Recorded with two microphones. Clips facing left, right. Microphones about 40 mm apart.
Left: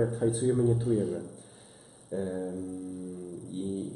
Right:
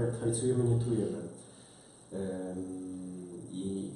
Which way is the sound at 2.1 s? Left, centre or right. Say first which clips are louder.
Left 5 dB; left.